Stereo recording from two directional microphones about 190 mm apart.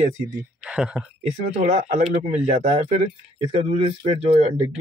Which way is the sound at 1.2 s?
40° right (ahead or behind).